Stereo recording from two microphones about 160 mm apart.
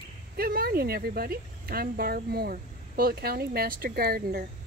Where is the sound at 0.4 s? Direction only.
70° right (ahead or behind).